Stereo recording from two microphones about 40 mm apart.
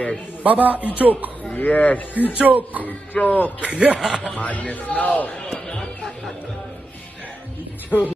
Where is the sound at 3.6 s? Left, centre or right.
Right.